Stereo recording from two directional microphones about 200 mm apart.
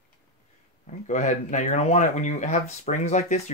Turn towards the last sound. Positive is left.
turn(degrees=35)  # may be behind; listen again after turning